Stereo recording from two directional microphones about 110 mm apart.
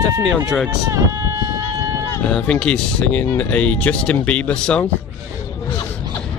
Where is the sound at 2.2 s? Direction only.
10° left (ahead or behind).